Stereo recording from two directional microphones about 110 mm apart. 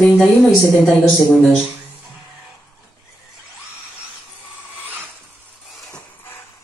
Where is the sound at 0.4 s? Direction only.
5° left (ahead or behind).